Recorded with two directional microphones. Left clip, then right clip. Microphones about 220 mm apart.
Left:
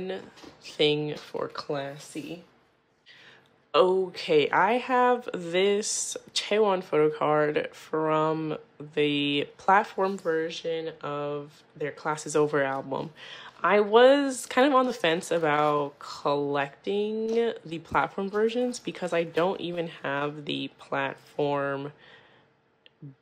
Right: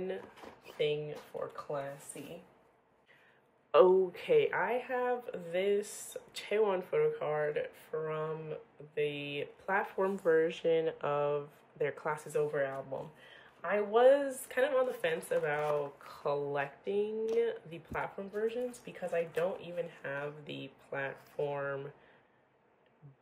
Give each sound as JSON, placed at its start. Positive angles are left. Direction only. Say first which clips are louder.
{"t": 3.7, "sound": "speech", "louder": "left 2 dB", "side_deg": 5}